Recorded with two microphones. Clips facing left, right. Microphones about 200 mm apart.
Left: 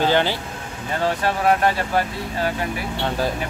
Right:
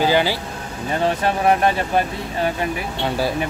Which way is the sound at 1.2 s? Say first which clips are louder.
Right 1 dB; 20° right (ahead or behind).